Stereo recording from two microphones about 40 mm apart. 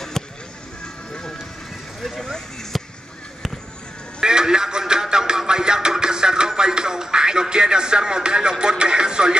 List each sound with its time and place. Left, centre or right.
0.2 s a sound: centre
2.0 s speech: centre
2.7 s basketball bounce: centre
4.2 s music: centre